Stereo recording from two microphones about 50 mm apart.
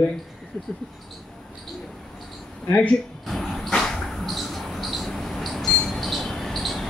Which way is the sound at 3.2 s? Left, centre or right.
Centre.